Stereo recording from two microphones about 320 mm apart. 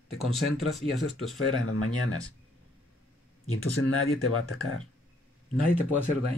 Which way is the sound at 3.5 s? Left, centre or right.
Left.